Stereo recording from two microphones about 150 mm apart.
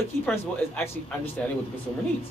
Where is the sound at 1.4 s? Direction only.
5° left (ahead or behind).